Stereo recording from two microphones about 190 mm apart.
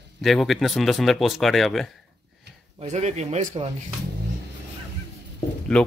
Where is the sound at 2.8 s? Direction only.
35° right (ahead or behind).